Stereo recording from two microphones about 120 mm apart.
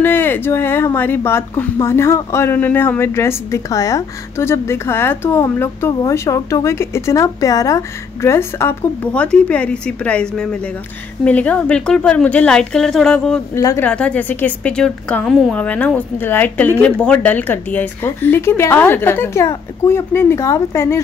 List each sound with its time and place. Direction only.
0.0 s a woman's voice: 20° left (ahead or behind)
13.6 s speech: 30° left (ahead or behind)
13.8 s a woman's voice: 10° left (ahead or behind)